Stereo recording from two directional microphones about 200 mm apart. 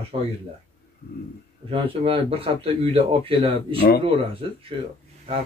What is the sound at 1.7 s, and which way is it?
Speech, 25° right (ahead or behind).